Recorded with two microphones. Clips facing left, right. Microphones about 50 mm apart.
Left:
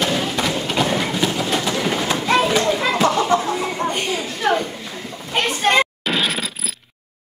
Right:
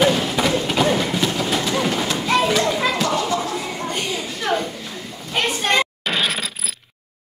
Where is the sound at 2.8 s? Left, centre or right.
Centre.